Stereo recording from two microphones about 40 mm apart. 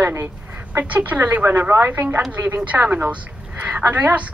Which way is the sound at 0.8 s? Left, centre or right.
Right.